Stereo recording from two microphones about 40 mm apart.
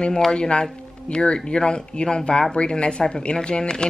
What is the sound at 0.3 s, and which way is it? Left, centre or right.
A woman's voice, left.